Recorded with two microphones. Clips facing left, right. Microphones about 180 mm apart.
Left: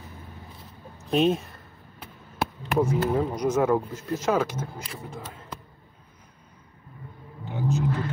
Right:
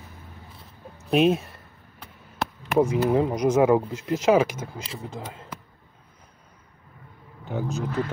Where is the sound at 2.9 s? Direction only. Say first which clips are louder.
Right 3 dB; 15° right (ahead or behind).